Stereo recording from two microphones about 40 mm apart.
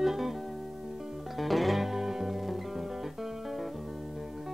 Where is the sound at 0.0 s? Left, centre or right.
Centre.